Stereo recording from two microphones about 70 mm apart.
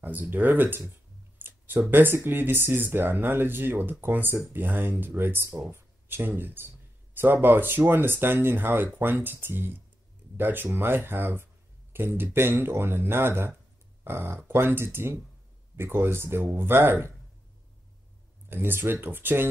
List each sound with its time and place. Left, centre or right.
0.0 s speech: right
1.4 s a sound: right
2.2 s speech: right
18.5 s speech: right